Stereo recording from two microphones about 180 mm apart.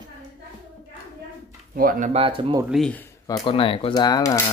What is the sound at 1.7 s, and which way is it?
Speech, 50° right (ahead or behind).